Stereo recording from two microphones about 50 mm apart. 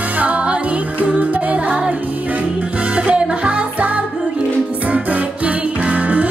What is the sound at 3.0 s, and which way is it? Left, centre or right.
Music, right.